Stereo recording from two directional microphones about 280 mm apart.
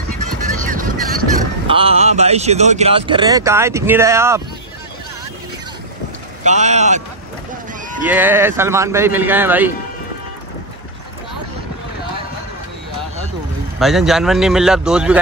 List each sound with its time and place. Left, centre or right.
0.2 s music: right
1.7 s speech: centre
6.4 s speech: right
8.0 s a man's voice: centre
13.7 s speech: centre